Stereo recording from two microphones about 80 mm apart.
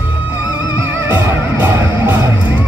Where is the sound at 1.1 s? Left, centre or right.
Right.